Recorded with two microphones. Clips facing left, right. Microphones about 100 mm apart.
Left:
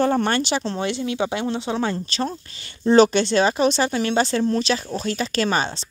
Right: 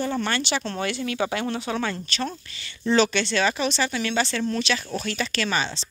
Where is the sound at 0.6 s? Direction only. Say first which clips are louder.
Left 3 dB; 25° left (ahead or behind).